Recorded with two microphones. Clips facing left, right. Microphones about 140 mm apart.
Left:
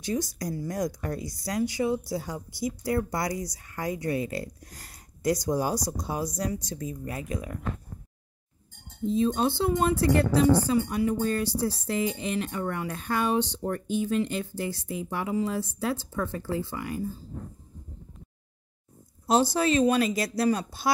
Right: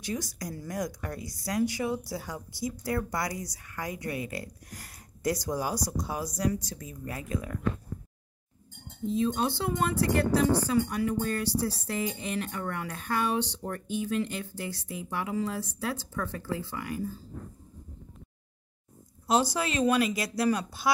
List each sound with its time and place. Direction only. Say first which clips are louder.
0.0 s a woman's voice: left 5 dB; 30° left (ahead or behind)
9.1 s a woman's voice: left 3 dB; 30° left (ahead or behind)
19.2 s a woman's voice: left 4 dB; 30° left (ahead or behind)